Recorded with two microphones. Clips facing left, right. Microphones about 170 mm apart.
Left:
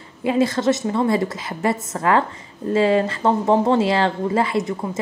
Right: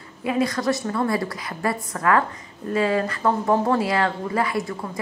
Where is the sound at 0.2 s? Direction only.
25° left (ahead or behind).